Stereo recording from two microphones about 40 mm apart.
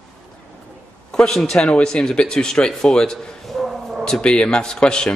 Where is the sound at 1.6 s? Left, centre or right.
Left.